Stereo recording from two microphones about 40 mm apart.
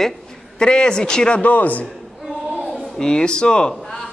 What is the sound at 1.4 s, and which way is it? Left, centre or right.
Speech, left.